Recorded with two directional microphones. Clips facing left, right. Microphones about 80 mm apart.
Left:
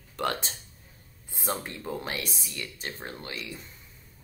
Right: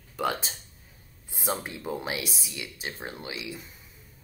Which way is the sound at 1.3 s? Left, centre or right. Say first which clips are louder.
Right 1 dB; centre.